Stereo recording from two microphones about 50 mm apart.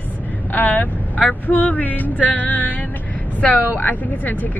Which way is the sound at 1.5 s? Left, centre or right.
Left.